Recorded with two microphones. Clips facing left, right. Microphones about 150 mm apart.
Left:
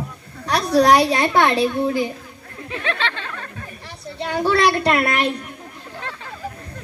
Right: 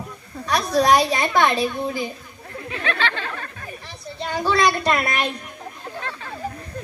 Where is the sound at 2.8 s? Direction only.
25° left (ahead or behind).